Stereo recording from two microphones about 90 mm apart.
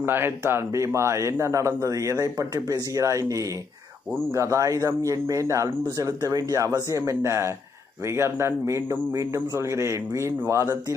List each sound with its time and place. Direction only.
0.0 s a man's voice: 25° right (ahead or behind)